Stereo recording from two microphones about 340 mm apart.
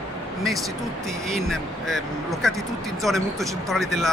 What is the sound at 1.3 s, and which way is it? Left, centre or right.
Speech, centre.